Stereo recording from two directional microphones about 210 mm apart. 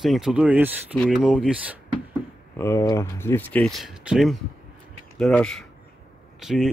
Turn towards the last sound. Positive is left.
turn(degrees=0)  # may be behind; listen again after turning